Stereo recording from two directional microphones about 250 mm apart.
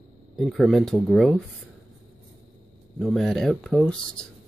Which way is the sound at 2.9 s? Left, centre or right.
Centre.